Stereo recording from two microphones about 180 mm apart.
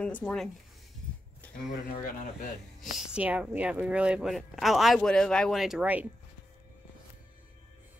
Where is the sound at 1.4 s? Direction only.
10° left (ahead or behind).